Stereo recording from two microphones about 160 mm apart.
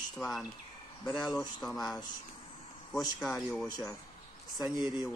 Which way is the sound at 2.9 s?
5° left (ahead or behind).